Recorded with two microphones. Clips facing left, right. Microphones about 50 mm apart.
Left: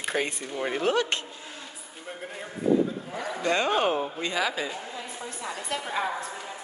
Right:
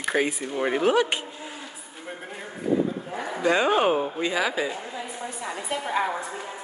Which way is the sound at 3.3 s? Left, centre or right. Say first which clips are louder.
Right 4 dB; centre.